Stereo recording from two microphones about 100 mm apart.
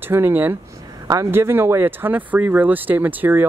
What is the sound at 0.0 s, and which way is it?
Speech, 20° right (ahead or behind).